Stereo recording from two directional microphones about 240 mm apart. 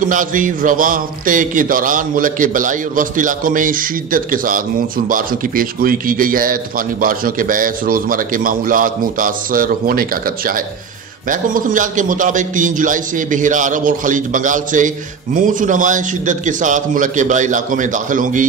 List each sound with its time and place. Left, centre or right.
0.1 s a man's voice: right